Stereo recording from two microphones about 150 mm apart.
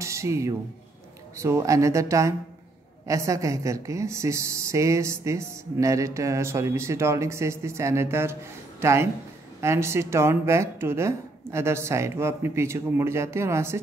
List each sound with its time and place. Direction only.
0.0 s speech: 20° right (ahead or behind)